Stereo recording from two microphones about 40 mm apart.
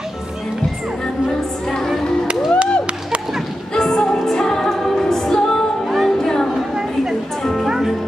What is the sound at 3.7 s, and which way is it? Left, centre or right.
Music, centre.